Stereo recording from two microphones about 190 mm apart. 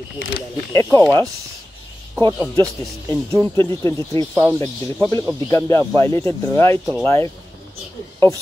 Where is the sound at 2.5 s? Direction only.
10° left (ahead or behind).